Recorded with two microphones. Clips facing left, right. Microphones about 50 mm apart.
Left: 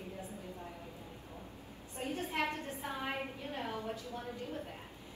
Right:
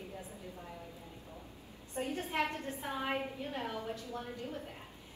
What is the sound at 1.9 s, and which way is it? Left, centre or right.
Speech, right.